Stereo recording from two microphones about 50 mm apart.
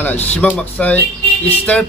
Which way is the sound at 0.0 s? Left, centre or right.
Left.